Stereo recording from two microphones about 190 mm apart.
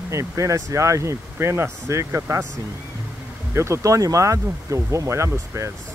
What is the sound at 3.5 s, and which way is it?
Speech, 15° right (ahead or behind).